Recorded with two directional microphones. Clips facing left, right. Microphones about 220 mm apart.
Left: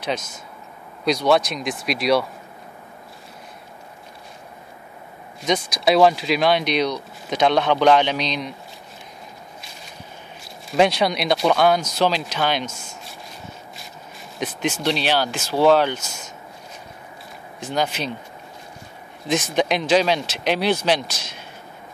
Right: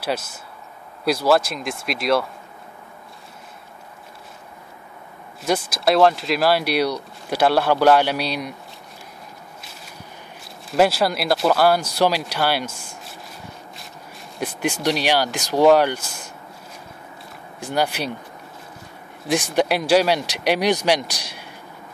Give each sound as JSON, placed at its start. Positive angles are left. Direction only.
{"t": 0.0, "sound": "speech", "side_deg": -5}
{"t": 5.4, "sound": "speech", "side_deg": -5}
{"t": 10.7, "sound": "speech", "side_deg": -5}
{"t": 14.4, "sound": "speech", "side_deg": -10}
{"t": 17.6, "sound": "speech", "side_deg": -10}
{"t": 19.2, "sound": "speech", "side_deg": -10}